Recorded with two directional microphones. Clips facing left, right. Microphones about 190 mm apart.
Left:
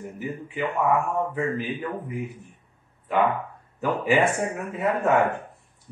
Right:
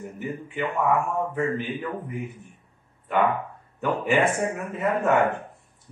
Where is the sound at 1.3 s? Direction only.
5° left (ahead or behind).